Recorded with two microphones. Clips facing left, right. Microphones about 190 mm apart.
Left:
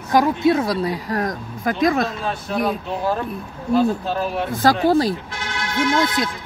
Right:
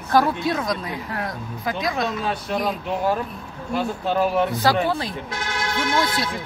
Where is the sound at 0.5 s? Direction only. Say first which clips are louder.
Left 5 dB; 35° left (ahead or behind); by 2.0 s 50° left (ahead or behind).